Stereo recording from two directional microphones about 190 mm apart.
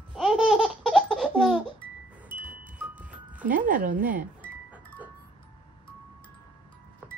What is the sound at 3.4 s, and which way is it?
Speech, 45° right (ahead or behind).